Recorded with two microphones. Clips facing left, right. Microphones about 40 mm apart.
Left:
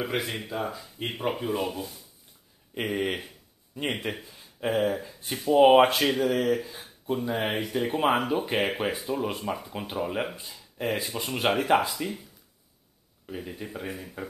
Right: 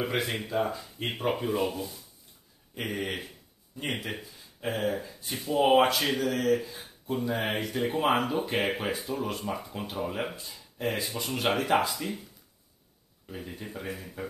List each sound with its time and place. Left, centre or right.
0.0 s speech: centre
2.7 s speech: centre
4.2 s a sound: left
4.6 s speech: centre
5.5 s speech: left
10.8 s speech: centre
13.3 s speech: centre